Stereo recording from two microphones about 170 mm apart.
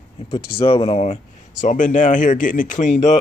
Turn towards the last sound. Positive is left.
turn(degrees=45)  # may be behind; listen again after turning